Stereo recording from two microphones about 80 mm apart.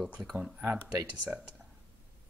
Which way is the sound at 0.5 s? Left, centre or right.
Right.